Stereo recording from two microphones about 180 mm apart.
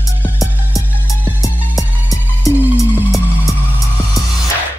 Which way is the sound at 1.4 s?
20° left (ahead or behind).